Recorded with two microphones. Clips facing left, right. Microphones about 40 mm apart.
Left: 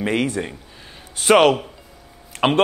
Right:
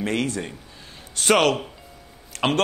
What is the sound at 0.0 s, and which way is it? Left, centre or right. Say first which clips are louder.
A man's voice: left 4 dB; centre.